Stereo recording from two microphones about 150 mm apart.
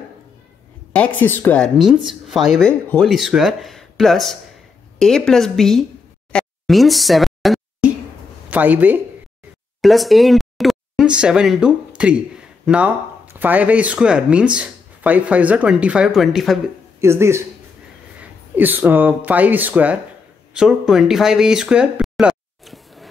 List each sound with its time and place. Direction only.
0.9 s a woman's voice: 10° left (ahead or behind)
2.0 s speech: centre (ahead or behind)
6.3 s plop: centre (ahead or behind)
8.5 s speech: 10° right (ahead or behind)
9.8 s speech: centre (ahead or behind)
17.0 s speech: 20° right (ahead or behind)
18.6 s speech: 15° right (ahead or behind)